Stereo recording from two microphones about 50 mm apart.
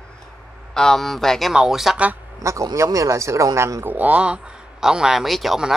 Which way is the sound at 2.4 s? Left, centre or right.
Right.